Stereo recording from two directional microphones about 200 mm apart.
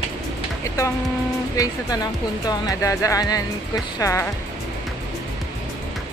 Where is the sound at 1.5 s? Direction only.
20° left (ahead or behind).